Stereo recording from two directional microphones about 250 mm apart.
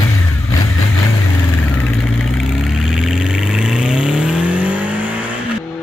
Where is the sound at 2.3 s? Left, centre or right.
Centre.